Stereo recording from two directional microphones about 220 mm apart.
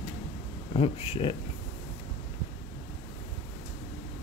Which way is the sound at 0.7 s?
25° left (ahead or behind).